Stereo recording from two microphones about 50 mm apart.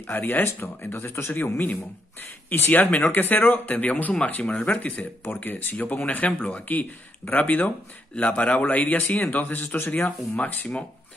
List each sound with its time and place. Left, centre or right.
0.0 s speech: left